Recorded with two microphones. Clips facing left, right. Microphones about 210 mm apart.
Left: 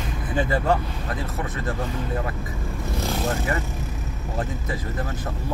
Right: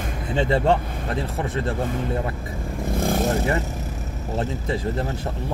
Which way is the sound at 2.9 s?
50° right (ahead or behind).